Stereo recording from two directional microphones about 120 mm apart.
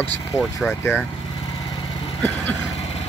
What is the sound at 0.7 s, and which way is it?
Speech, 20° left (ahead or behind).